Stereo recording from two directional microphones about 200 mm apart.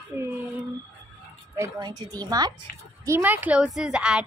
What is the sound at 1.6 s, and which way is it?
A woman's voice, 20° right (ahead or behind).